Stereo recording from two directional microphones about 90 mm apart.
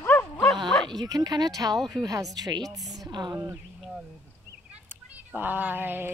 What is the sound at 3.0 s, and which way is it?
Speech, 55° right (ahead or behind).